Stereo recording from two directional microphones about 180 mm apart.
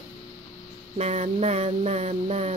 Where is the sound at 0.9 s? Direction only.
35° right (ahead or behind).